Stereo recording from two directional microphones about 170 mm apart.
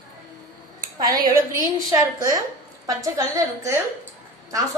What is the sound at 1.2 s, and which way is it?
A woman's voice, 20° right (ahead or behind).